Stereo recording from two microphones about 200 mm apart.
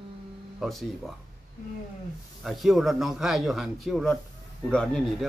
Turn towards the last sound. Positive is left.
turn(degrees=5)  # may be behind; listen again after turning